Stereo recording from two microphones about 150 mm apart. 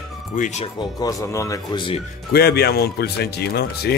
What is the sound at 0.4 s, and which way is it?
Speech, 50° left (ahead or behind).